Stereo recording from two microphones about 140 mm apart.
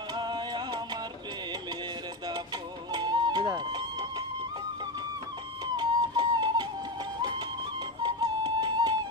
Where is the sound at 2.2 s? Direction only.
30° right (ahead or behind).